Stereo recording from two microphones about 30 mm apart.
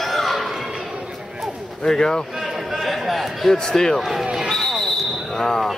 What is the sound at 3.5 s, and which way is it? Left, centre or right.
Speech, centre.